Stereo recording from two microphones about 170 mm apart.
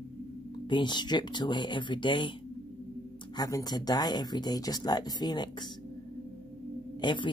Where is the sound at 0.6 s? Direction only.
30° left (ahead or behind).